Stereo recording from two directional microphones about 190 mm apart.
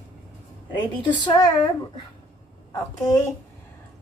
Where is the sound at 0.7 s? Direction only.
25° left (ahead or behind).